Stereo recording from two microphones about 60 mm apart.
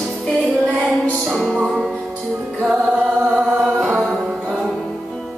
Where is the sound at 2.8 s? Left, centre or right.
Centre.